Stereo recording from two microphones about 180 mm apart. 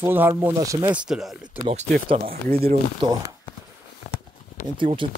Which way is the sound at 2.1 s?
55° right (ahead or behind).